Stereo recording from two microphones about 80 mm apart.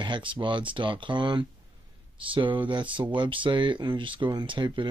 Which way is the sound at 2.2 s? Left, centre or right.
Right.